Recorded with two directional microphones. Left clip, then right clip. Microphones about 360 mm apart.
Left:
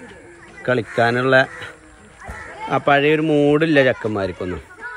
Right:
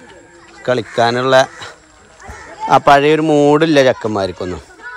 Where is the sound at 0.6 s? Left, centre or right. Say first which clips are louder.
Right 4 dB; centre.